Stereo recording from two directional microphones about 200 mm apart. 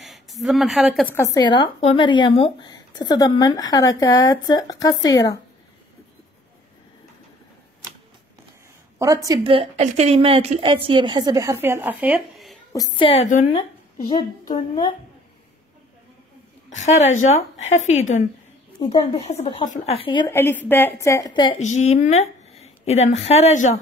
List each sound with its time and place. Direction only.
0.0 s a woman's voice: centre (ahead or behind); by 5.4 s 20° left (ahead or behind)
8.9 s a woman's voice: 15° right (ahead or behind)
12.7 s a woman's voice: 20° left (ahead or behind)
16.8 s a woman's voice: 35° left (ahead or behind)
20.2 s a woman's voice: 10° left (ahead or behind)
21.5 s a woman's voice: 35° left (ahead or behind)